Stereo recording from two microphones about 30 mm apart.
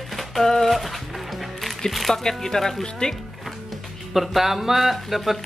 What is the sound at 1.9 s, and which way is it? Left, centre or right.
Speech, centre.